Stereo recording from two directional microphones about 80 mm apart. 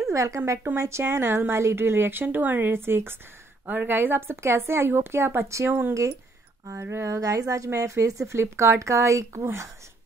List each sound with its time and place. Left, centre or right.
0.1 s speech: right